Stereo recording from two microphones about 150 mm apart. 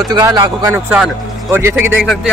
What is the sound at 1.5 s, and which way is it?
Speech, 15° right (ahead or behind).